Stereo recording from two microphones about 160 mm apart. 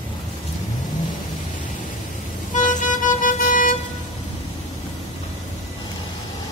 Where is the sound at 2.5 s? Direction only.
50° left (ahead or behind).